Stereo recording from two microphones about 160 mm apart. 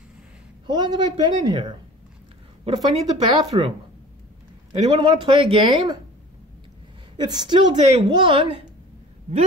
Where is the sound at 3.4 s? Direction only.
35° right (ahead or behind).